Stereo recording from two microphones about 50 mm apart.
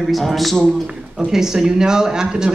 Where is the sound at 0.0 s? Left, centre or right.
Centre.